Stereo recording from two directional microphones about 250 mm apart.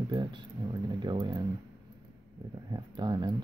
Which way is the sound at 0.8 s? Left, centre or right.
Centre.